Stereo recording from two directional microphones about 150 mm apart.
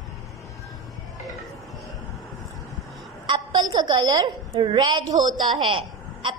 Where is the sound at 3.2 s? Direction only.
30° right (ahead or behind).